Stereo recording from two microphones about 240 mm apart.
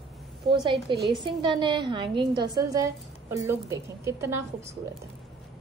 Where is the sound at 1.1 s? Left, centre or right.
Centre.